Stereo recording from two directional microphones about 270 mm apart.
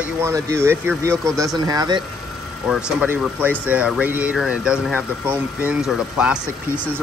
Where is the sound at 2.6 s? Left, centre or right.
Centre.